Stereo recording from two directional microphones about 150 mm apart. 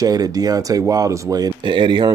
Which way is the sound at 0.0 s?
25° right (ahead or behind).